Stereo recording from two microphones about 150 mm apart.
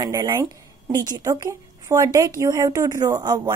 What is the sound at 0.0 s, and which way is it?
A woman's voice, 20° right (ahead or behind).